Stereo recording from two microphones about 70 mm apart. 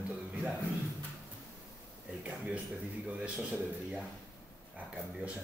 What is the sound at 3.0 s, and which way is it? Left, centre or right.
Speech, centre.